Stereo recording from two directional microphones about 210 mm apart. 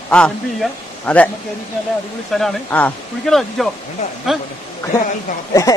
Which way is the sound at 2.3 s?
5° left (ahead or behind).